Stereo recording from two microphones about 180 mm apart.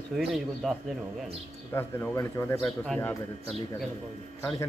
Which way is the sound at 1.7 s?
15° left (ahead or behind).